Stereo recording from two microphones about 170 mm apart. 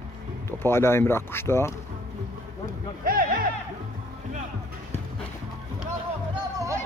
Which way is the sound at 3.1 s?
55° right (ahead or behind).